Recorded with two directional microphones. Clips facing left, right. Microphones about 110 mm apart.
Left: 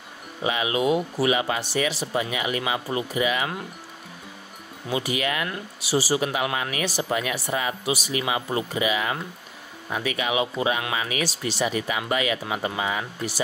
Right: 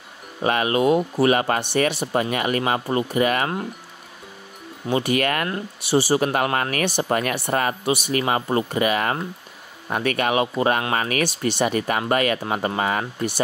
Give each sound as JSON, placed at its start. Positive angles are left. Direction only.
{"t": 0.4, "sound": "speech", "side_deg": -55}
{"t": 4.8, "sound": "speech", "side_deg": -55}